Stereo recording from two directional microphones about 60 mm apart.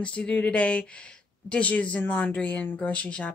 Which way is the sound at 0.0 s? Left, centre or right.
Centre.